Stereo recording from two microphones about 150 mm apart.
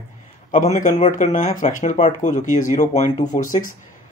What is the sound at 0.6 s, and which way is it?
Speech, 60° left (ahead or behind).